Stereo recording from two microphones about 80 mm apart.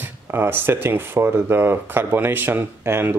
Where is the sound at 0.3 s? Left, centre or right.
Right.